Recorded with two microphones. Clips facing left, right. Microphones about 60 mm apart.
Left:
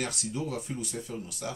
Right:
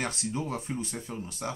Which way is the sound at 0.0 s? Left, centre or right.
Right.